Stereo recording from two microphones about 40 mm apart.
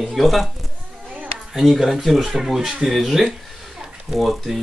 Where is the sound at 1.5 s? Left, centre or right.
Centre.